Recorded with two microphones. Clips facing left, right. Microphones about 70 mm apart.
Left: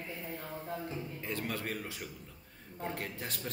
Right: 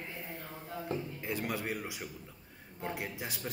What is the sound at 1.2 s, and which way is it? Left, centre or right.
A man's voice, centre.